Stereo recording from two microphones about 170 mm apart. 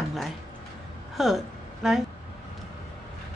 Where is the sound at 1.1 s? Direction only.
Centre (ahead or behind).